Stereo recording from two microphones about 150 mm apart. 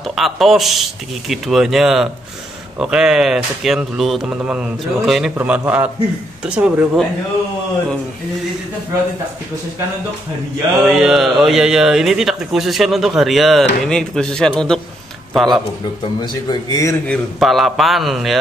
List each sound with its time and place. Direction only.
0.1 s speech: centre (ahead or behind)
10.9 s speech: centre (ahead or behind)
16.2 s a man's voice: 25° left (ahead or behind)
17.0 s speech: 5° left (ahead or behind)